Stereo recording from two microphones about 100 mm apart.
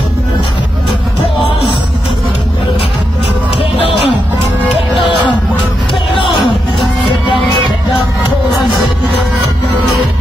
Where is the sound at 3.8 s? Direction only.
65° left (ahead or behind).